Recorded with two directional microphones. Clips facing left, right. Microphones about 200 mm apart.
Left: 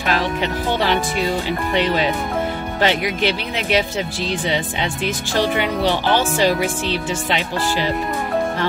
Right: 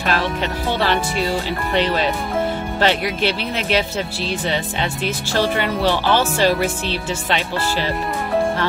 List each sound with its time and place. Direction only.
0.0 s speech: 15° left (ahead or behind)